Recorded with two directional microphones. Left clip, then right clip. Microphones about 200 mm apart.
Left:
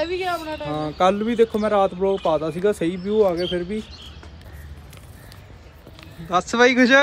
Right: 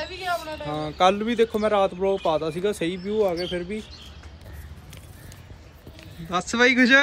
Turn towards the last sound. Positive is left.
turn(degrees=5)  # may be behind; listen again after turning